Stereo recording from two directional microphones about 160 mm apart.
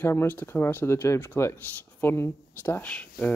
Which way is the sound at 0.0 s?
15° left (ahead or behind).